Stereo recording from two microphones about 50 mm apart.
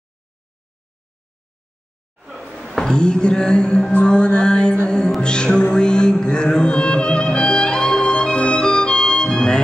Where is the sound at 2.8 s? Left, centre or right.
Centre.